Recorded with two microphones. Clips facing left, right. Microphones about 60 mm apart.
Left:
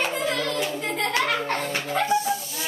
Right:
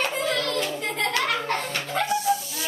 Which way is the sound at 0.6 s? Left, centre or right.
Centre.